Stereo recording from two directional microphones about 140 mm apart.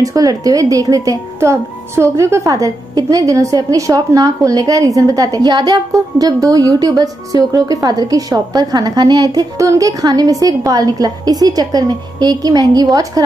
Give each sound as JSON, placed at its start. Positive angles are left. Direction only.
{"t": 0.0, "sound": "a child's voice", "side_deg": -25}